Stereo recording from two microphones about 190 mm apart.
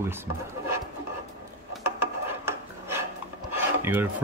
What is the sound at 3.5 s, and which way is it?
Filing, 10° right (ahead or behind).